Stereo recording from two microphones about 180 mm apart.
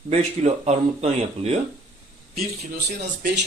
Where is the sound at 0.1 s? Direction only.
35° right (ahead or behind).